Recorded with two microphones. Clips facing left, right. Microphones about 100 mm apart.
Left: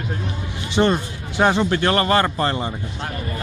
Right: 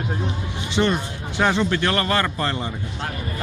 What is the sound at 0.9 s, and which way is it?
Speech, 25° left (ahead or behind).